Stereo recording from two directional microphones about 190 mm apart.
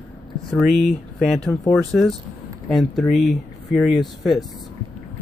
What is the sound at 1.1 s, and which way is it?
Speech, centre (ahead or behind).